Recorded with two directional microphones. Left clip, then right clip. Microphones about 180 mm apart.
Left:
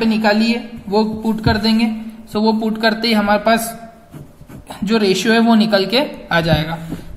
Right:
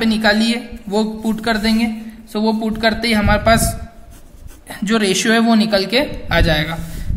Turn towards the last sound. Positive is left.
turn(degrees=-35)  # may be behind; listen again after turning